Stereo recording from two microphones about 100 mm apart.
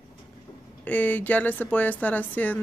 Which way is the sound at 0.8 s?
15° left (ahead or behind).